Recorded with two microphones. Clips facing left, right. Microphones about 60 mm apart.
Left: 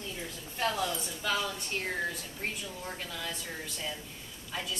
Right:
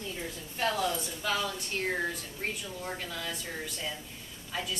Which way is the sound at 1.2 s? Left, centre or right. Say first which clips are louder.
Even; centre.